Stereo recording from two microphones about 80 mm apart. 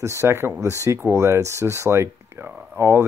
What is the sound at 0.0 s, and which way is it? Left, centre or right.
Speech, right.